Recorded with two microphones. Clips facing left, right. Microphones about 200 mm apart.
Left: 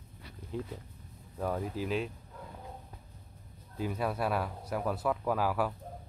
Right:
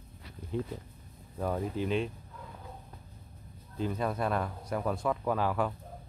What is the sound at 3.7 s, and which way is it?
Speech, 10° left (ahead or behind).